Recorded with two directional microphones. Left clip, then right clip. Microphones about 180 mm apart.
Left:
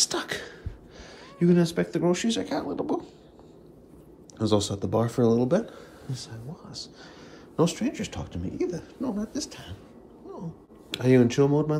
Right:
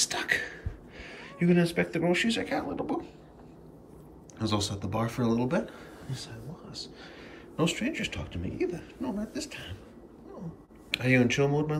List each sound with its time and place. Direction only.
0.0 s whispering: 15° left (ahead or behind)
1.0 s speech: 10° left (ahead or behind)
4.4 s speech: 15° left (ahead or behind)
10.9 s speech: 15° left (ahead or behind)